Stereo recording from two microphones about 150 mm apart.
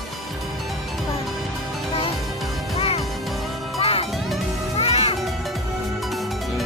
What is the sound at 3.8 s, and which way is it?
Music, 40° left (ahead or behind).